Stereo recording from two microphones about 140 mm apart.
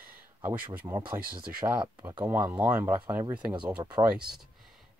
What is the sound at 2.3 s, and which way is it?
Speech, 15° right (ahead or behind).